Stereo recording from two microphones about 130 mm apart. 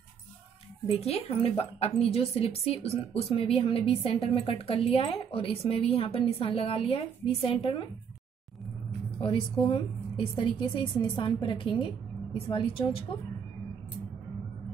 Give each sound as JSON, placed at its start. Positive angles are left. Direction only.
{"t": 0.8, "sound": "speech", "side_deg": 50}
{"t": 9.2, "sound": "a woman's voice", "side_deg": 40}